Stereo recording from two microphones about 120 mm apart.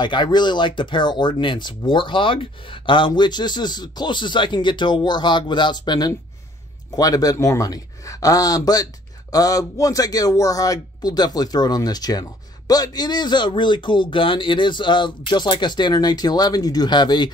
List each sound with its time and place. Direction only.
0.0 s speech: 40° left (ahead or behind)